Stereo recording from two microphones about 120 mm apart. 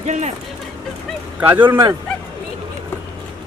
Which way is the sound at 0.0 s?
75° right (ahead or behind).